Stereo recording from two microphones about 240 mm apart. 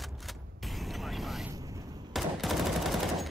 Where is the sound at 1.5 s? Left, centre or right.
Centre.